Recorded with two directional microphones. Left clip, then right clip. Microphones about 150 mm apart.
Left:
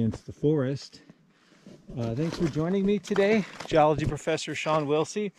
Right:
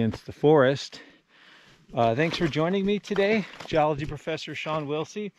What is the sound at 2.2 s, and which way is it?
Speech, 5° right (ahead or behind).